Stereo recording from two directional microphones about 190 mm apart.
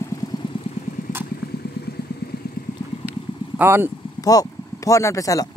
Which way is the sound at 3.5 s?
10° right (ahead or behind).